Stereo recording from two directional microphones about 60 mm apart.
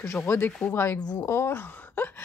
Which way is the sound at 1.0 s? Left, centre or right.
Left.